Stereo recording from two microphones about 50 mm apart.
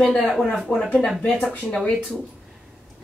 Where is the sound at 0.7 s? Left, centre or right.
Left.